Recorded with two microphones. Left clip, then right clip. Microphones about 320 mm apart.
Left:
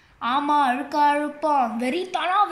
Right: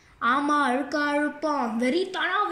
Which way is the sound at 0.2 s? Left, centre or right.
Centre.